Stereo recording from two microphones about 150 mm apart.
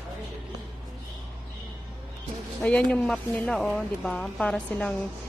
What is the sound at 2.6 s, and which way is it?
A woman's voice, 5° left (ahead or behind).